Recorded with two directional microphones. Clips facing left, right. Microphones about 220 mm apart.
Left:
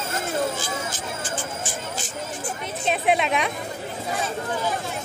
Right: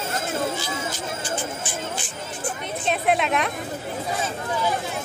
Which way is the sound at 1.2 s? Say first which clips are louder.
Right 1 dB; 45° left (ahead or behind).